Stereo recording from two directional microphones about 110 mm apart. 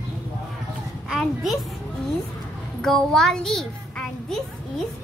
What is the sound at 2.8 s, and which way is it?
A child's voice, 5° left (ahead or behind).